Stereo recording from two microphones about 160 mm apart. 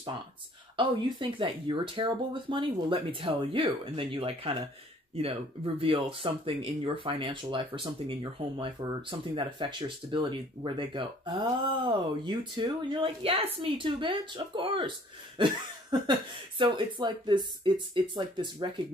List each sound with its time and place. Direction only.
0.7 s speech: 30° right (ahead or behind)